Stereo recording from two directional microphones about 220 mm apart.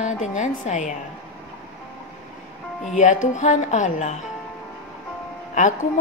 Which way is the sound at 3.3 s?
35° left (ahead or behind).